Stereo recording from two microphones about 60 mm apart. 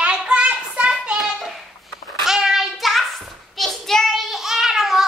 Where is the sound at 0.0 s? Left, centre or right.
Centre.